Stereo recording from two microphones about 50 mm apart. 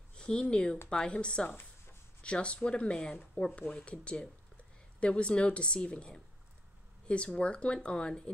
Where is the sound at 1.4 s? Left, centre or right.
Left.